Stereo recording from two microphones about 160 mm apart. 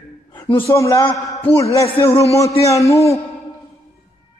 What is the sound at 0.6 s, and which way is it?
Speech, 20° left (ahead or behind).